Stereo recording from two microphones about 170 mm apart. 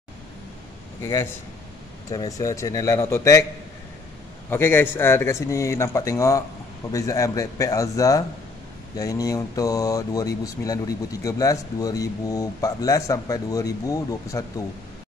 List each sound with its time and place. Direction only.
1.0 s a man's voice: 20° left (ahead or behind)
4.5 s a man's voice: 15° left (ahead or behind)